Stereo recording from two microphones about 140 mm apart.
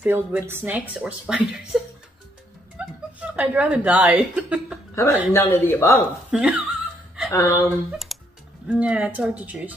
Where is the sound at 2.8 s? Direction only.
10° right (ahead or behind).